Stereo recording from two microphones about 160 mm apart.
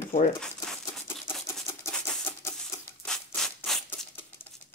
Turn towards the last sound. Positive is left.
turn(degrees=0)  # may be behind; listen again after turning